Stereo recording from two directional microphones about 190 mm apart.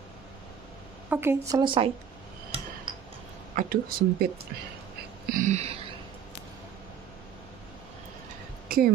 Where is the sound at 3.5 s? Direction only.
45° right (ahead or behind).